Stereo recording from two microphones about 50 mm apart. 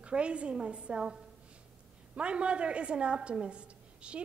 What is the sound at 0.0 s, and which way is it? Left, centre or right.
A woman's voice, right.